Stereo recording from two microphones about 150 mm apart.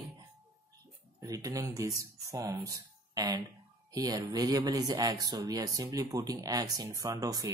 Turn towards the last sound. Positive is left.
turn(degrees=-25)  # may be behind; listen again after turning